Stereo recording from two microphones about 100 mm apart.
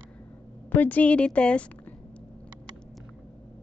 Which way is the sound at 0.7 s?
15° left (ahead or behind).